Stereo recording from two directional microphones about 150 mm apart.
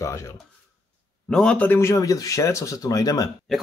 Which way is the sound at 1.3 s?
5° left (ahead or behind).